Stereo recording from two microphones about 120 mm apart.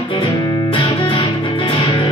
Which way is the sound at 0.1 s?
40° left (ahead or behind).